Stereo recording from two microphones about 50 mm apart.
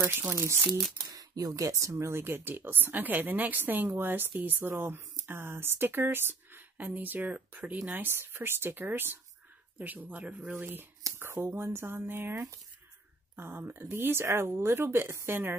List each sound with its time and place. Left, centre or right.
0.1 s speech: right
1.6 s speech: right
7.9 s speech: right
9.8 s speech: right
10.5 s speech: right
11.4 s speech: right